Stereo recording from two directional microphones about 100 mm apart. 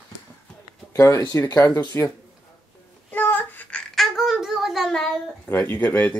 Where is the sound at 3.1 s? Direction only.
20° left (ahead or behind).